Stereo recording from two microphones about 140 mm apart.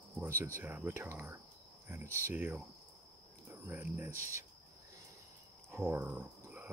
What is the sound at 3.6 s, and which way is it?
Speech, 15° right (ahead or behind).